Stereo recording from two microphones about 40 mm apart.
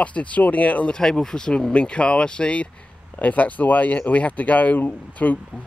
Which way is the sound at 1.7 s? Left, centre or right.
Left.